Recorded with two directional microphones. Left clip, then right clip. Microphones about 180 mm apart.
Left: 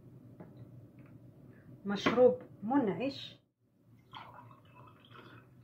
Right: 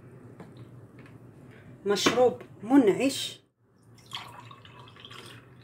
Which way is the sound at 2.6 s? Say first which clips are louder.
Right 10 dB; 45° right (ahead or behind).